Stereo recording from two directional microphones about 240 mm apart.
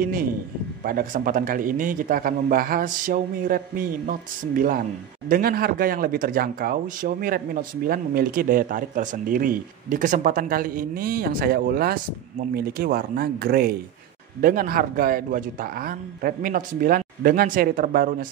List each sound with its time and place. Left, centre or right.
0.0 s speech: right